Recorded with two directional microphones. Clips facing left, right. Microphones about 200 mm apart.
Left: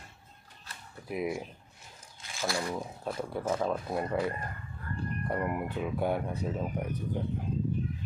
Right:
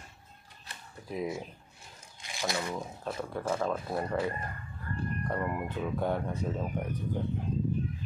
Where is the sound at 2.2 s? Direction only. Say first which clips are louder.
Even; 15° right (ahead or behind).